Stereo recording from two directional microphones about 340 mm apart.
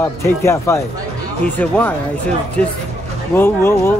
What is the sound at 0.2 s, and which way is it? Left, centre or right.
Speech, centre.